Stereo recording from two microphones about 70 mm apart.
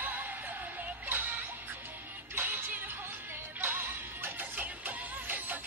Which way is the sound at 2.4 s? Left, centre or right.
Right.